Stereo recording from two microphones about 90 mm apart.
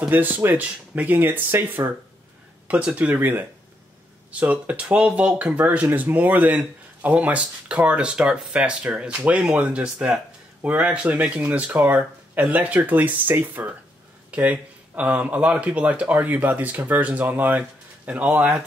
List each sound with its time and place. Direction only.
0.1 s speech: 20° right (ahead or behind)